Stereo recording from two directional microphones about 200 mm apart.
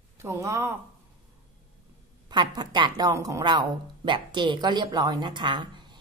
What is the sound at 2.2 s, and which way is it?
A woman's voice, 20° right (ahead or behind).